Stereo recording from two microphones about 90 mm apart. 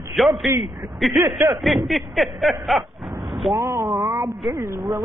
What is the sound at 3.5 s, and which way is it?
Speech, 50° right (ahead or behind).